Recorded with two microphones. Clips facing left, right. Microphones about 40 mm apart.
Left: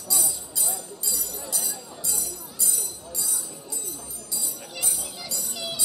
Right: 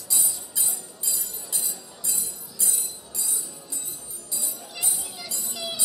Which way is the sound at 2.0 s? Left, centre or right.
Right.